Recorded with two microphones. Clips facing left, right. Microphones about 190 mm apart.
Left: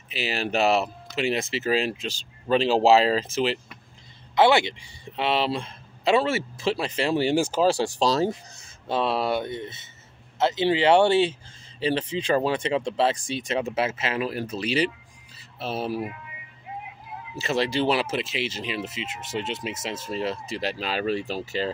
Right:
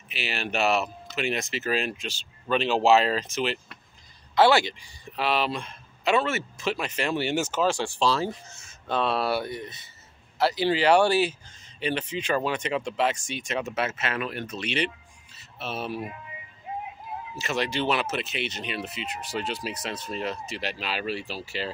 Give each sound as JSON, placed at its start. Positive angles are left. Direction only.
{"t": 0.3, "sound": "speech", "side_deg": 35}
{"t": 4.4, "sound": "speech", "side_deg": 20}
{"t": 17.4, "sound": "speech", "side_deg": 35}